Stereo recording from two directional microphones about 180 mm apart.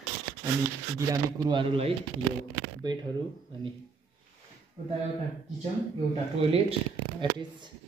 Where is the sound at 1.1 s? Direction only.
25° right (ahead or behind).